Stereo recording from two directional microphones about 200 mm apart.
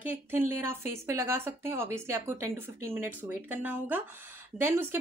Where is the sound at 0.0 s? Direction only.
10° right (ahead or behind).